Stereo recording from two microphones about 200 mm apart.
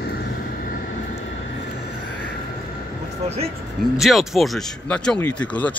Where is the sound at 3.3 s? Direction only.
30° right (ahead or behind).